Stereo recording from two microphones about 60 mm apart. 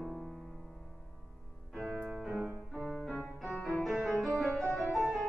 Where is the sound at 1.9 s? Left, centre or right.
Right.